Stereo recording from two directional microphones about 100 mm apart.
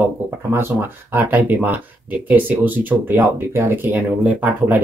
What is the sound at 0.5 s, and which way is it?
Speech, 25° right (ahead or behind).